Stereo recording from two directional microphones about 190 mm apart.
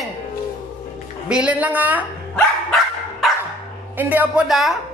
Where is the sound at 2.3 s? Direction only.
Centre (ahead or behind).